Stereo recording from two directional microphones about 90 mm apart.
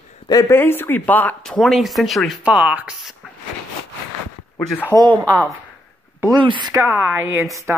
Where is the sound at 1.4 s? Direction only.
5° left (ahead or behind).